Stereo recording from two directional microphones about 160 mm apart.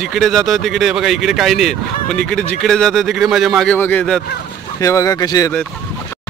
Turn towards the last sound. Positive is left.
turn(degrees=25)  # may be behind; listen again after turning